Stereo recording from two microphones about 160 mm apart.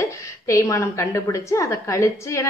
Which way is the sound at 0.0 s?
20° left (ahead or behind).